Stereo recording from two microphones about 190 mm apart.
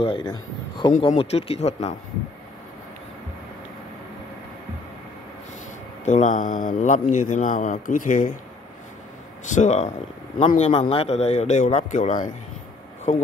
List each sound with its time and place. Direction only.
0.0 s a man's voice: 25° left (ahead or behind)
6.0 s speech: 40° left (ahead or behind)
9.5 s speech: 40° left (ahead or behind)